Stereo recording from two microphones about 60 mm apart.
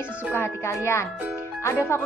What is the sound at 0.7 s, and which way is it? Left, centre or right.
A woman's voice, left.